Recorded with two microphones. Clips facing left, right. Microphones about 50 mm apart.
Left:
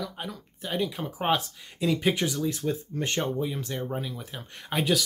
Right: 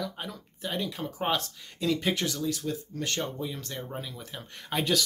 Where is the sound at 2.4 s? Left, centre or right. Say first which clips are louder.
Left 3 dB; left.